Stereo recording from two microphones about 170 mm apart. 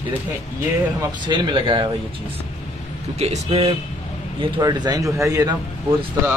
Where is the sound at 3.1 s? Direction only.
35° right (ahead or behind).